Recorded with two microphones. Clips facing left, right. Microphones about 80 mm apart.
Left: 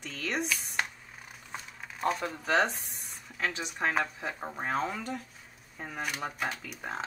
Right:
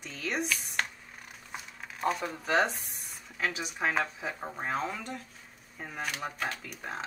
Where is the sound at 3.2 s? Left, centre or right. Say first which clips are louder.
Even; centre.